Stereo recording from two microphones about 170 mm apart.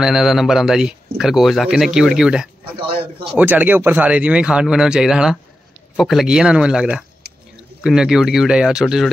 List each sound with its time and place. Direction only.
0.0 s speech: centre (ahead or behind)
2.8 s a man's voice: 30° right (ahead or behind)
3.3 s speech: 10° right (ahead or behind)